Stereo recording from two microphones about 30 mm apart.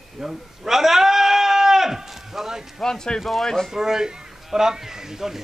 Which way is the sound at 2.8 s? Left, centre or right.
Left.